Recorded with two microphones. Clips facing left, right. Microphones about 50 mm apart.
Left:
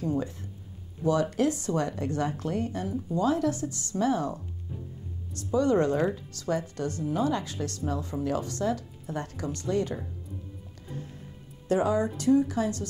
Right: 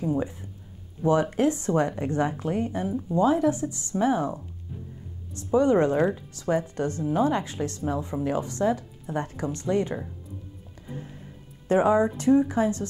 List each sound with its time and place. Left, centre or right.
0.0 s speech: centre
1.0 s speech: right
10.9 s music: right
11.6 s speech: right